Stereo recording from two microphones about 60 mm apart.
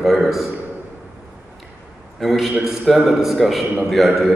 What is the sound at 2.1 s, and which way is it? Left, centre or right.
A man's voice, centre.